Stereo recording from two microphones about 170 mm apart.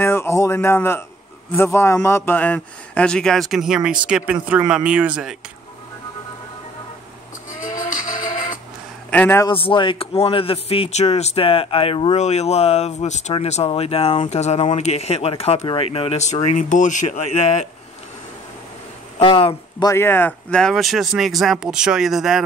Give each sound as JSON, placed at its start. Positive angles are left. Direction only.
{"t": 0.0, "sound": "a man's voice", "side_deg": 15}
{"t": 9.1, "sound": "a man's voice", "side_deg": 10}
{"t": 9.5, "sound": "speech", "side_deg": 30}
{"t": 19.1, "sound": "speech", "side_deg": 30}
{"t": 19.9, "sound": "speech", "side_deg": 15}